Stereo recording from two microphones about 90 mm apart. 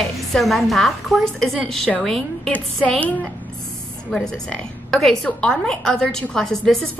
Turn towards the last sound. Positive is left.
turn(degrees=5)  # may be behind; listen again after turning